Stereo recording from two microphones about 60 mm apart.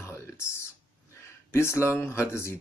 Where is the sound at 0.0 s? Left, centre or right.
Left.